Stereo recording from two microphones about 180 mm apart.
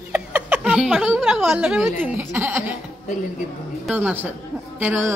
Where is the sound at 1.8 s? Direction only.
15° right (ahead or behind).